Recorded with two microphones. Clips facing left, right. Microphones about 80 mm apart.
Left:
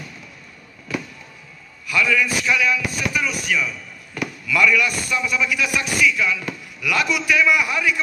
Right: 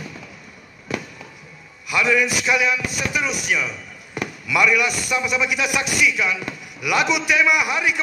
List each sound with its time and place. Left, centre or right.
1.9 s speech: centre